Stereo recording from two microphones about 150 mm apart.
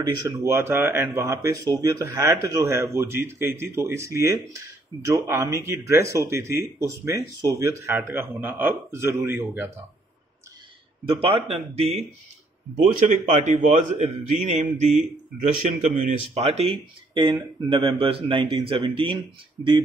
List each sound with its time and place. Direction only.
0.4 s speech: 15° right (ahead or behind)
11.1 s speech: 40° right (ahead or behind)
13.4 s a man's voice: 55° right (ahead or behind); by 19.1 s 35° right (ahead or behind)